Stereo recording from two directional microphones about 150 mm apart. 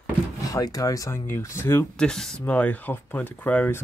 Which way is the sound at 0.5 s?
25° left (ahead or behind).